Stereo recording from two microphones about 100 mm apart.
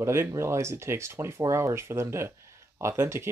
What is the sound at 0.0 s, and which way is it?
Speech, 25° right (ahead or behind).